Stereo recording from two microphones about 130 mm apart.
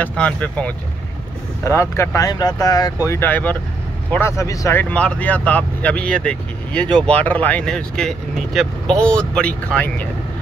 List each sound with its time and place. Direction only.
0.0 s speech: 10° left (ahead or behind)
1.6 s speech: 20° left (ahead or behind)
3.1 s speech: 15° left (ahead or behind)